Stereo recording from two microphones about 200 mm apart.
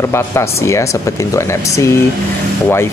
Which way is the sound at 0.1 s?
15° left (ahead or behind).